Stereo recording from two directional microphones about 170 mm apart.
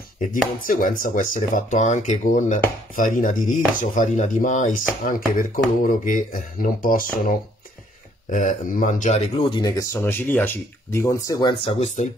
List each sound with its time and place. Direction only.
0.2 s speech: 55° left (ahead or behind)
9.4 s speech: 25° left (ahead or behind); by 12.1 s 40° left (ahead or behind)